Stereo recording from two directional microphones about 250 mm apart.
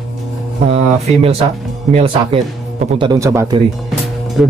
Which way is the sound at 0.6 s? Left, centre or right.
Right.